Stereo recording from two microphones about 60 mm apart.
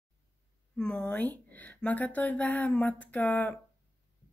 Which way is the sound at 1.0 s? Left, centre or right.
Left.